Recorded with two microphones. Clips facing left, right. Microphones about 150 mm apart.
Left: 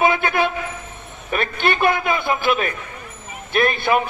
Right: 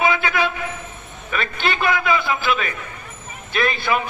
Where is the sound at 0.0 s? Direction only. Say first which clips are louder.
Left 2 dB; 50° left (ahead or behind).